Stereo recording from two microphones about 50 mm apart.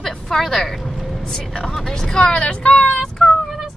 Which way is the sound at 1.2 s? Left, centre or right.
Centre.